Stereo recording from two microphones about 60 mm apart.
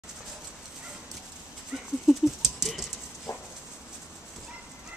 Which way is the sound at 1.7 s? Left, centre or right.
Centre.